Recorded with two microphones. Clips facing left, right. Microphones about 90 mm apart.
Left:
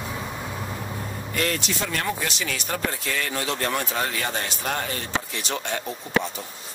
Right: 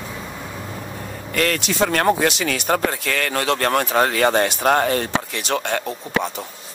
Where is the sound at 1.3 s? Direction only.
70° right (ahead or behind).